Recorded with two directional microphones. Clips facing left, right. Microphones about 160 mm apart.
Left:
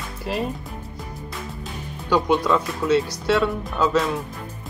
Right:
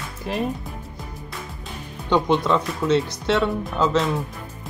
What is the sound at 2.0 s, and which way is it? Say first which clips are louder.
Speech: even; 20° right (ahead or behind).